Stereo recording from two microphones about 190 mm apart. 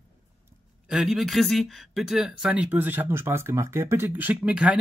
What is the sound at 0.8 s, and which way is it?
Speech, centre (ahead or behind).